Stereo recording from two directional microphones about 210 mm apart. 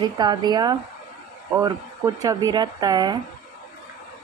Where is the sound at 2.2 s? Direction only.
15° right (ahead or behind).